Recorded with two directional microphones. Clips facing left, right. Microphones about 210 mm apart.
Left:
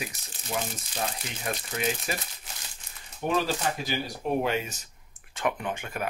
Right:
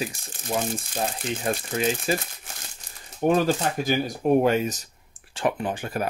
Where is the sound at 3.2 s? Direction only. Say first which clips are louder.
Right 6 dB; 45° right (ahead or behind).